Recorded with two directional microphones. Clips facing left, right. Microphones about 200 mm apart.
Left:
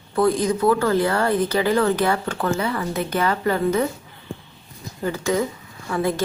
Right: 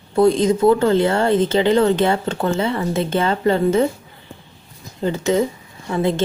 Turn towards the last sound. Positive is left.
turn(degrees=-25)  # may be behind; listen again after turning